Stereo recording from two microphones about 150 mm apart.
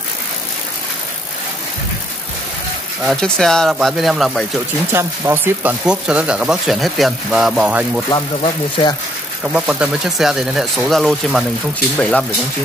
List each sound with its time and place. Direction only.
3.0 s speech: centre (ahead or behind)
4.9 s speech: 15° right (ahead or behind)
8.1 s speech: 30° left (ahead or behind)
9.4 s speech: 5° right (ahead or behind)